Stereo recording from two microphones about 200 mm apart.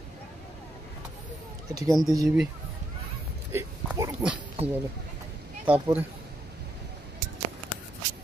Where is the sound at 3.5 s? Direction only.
15° right (ahead or behind).